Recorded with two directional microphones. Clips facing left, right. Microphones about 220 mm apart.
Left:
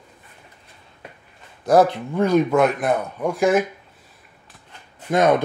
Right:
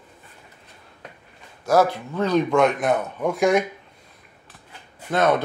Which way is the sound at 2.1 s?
10° left (ahead or behind).